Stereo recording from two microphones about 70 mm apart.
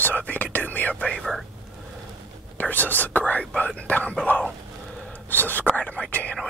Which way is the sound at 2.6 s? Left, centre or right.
Left.